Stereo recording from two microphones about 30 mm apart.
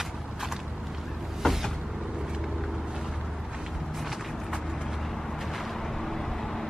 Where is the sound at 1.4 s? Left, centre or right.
Centre.